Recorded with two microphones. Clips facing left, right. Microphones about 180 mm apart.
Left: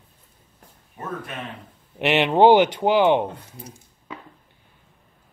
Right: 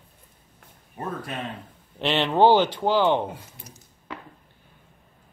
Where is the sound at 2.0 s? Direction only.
15° left (ahead or behind).